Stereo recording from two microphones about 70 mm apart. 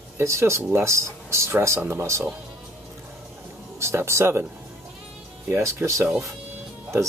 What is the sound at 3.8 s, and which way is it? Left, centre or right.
Speech, right.